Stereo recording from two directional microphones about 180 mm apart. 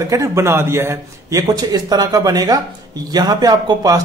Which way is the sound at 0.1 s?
15° right (ahead or behind).